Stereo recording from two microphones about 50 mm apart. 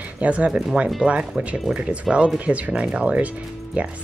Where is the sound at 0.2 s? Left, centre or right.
Right.